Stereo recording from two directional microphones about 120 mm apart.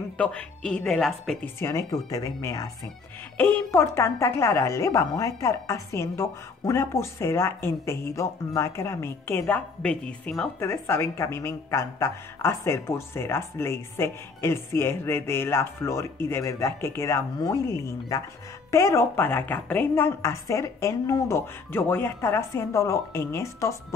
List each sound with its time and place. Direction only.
0.2 s a woman's voice: 10° left (ahead or behind)
1.4 s a woman's voice: 25° left (ahead or behind)
3.3 s a woman's voice: 20° left (ahead or behind)
9.8 s a woman's voice: 10° left (ahead or behind)
10.6 s a woman's voice: 20° left (ahead or behind)